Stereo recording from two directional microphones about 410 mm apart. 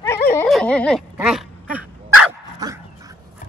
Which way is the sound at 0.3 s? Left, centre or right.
Centre.